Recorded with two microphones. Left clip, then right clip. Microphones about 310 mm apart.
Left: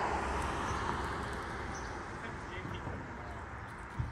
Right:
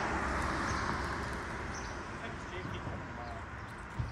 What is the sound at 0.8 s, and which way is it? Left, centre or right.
Vehicle, centre.